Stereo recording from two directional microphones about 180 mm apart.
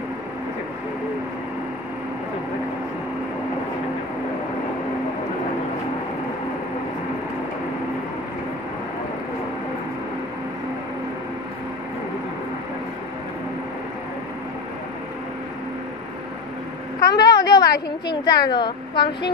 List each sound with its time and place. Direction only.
17.0 s vehicle: 20° left (ahead or behind)
17.7 s a woman's voice: 25° left (ahead or behind)